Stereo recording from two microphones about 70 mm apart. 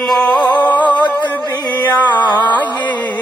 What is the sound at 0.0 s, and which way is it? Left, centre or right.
Music, centre.